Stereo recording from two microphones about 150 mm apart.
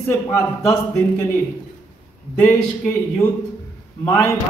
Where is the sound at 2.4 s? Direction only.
10° left (ahead or behind).